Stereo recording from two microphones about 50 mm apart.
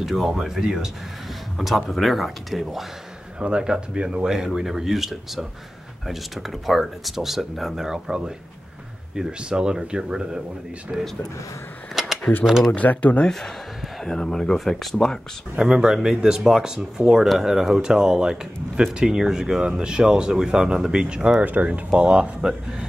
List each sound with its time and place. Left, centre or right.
0.0 s speech: centre
1.6 s speech: centre
3.3 s speech: centre
11.9 s keys jangling: centre
12.4 s speech: centre
12.7 s speech: left
14.0 s speech: centre
15.5 s speech: centre
22.5 s speech: centre